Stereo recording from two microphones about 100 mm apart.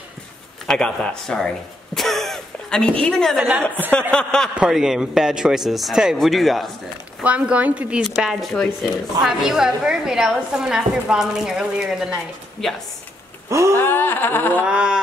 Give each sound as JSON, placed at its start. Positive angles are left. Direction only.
{"t": 0.7, "sound": "speech", "side_deg": 10}
{"t": 4.6, "sound": "a woman's voice", "side_deg": -5}
{"t": 7.2, "sound": "a woman's voice", "side_deg": -15}
{"t": 13.5, "sound": "speech", "side_deg": -30}
{"t": 13.7, "sound": "a sound", "side_deg": 20}
{"t": 14.7, "sound": "a woman's voice", "side_deg": -10}